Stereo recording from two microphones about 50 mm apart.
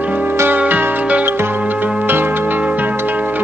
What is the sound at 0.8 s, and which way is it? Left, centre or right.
Music, right.